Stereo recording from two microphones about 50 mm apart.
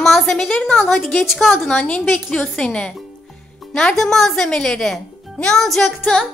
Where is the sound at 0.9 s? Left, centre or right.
Left.